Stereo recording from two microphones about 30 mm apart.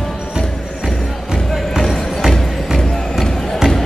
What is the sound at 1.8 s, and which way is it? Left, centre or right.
Music, centre.